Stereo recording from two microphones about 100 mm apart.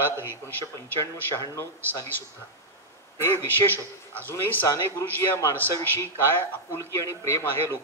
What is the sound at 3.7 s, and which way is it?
Speech, 20° left (ahead or behind).